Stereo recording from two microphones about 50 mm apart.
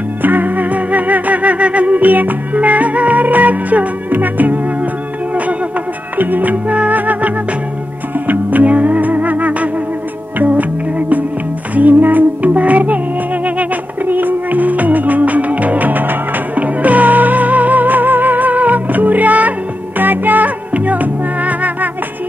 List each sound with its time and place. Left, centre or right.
0.2 s music: right
6.1 s music: right